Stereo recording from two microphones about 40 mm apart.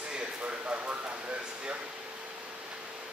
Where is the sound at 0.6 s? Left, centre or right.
Right.